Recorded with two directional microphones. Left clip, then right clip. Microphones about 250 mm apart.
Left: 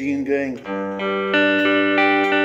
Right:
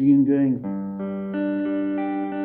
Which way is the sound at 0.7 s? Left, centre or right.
Left.